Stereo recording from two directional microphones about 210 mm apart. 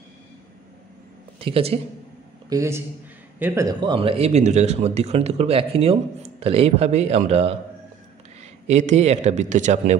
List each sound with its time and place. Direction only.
1.4 s speech: 25° right (ahead or behind)
2.5 s a man's voice: 15° right (ahead or behind); by 9.9 s 35° right (ahead or behind)